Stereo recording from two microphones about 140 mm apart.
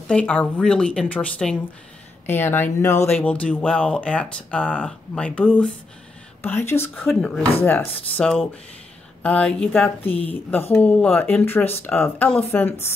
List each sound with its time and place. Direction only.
0.1 s speech: 10° left (ahead or behind)
7.1 s speech: centre (ahead or behind); by 12.9 s 15° left (ahead or behind)